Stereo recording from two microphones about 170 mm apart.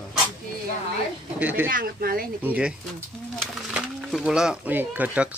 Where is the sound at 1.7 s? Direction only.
60° right (ahead or behind).